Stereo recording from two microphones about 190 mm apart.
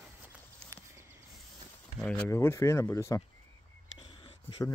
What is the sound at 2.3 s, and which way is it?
Speech, 15° left (ahead or behind).